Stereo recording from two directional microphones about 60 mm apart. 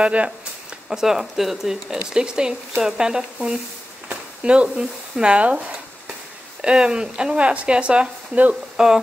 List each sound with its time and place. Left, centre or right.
0.0 s speech: right
0.8 s speech: centre
6.6 s speech: centre
8.7 s speech: centre